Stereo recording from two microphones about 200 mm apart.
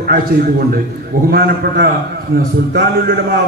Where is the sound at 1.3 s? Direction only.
50° right (ahead or behind).